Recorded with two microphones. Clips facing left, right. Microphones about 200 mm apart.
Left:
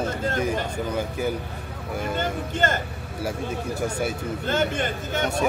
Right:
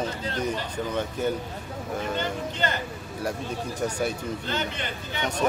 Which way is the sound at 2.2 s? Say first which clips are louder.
Left 3 dB; 50° left (ahead or behind).